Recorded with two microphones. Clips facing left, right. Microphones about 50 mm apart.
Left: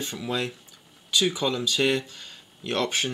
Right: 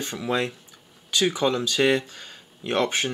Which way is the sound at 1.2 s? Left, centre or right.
Centre.